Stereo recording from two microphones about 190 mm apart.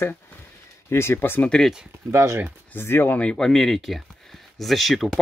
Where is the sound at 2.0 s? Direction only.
15° right (ahead or behind).